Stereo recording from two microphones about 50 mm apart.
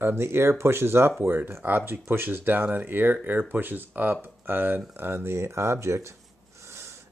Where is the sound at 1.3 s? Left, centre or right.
Right.